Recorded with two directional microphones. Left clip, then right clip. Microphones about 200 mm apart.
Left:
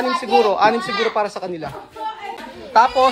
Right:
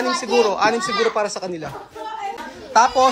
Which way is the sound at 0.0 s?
15° right (ahead or behind).